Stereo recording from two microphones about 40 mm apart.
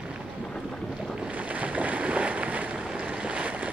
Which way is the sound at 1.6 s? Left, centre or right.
Right.